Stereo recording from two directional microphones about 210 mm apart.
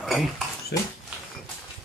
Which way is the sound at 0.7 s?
50° left (ahead or behind).